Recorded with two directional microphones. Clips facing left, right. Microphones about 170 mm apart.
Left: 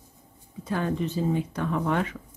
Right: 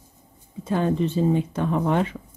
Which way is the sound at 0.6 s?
25° right (ahead or behind).